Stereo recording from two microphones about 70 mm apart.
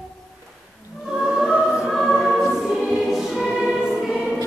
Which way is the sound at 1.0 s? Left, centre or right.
Centre.